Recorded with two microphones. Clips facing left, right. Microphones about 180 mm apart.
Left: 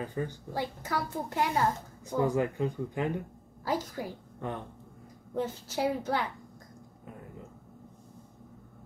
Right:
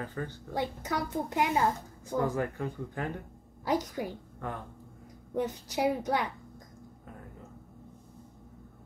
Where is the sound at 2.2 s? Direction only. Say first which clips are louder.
Left 3 dB; 15° left (ahead or behind).